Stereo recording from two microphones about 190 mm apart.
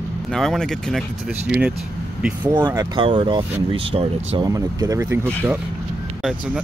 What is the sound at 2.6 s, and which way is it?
Speech, 20° right (ahead or behind).